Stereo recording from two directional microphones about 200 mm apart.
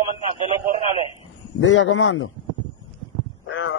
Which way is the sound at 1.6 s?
75° left (ahead or behind).